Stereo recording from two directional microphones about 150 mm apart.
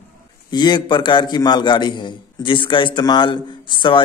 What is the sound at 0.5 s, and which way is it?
A man's voice, 30° left (ahead or behind).